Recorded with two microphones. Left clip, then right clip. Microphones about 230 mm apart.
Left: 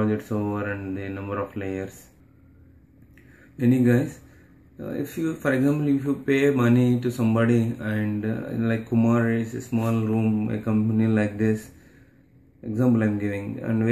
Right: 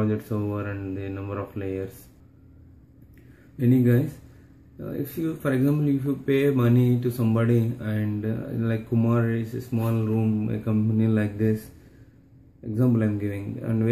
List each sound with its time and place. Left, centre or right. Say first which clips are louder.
0.0 s speech: left 2 dB; centre
3.5 s speech: left 1 dB; centre
12.7 s speech: left 2 dB; centre